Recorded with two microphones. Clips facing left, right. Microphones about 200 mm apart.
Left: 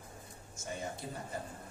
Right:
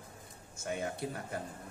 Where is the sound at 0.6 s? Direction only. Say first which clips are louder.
Right 4 dB; 60° right (ahead or behind).